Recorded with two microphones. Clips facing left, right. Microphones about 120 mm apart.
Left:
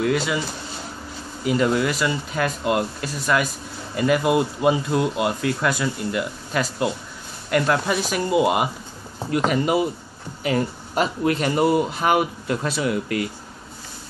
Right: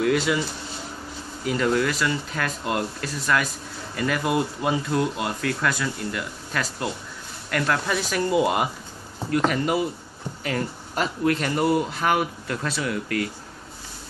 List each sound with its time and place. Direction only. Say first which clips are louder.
0.0 s speech: even; centre (ahead or behind)
1.4 s speech: left 2 dB; 10° left (ahead or behind)